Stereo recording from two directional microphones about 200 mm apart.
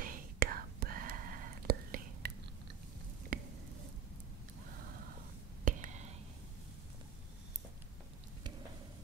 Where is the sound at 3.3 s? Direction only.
45° right (ahead or behind).